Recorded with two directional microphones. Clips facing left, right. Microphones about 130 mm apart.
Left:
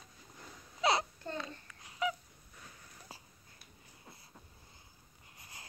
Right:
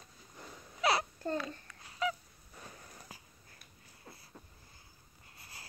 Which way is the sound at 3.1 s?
30° left (ahead or behind).